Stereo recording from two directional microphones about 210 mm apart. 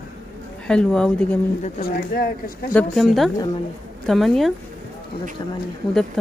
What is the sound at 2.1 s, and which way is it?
Speech, 45° left (ahead or behind).